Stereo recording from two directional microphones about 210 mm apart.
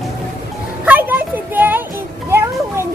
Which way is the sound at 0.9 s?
10° right (ahead or behind).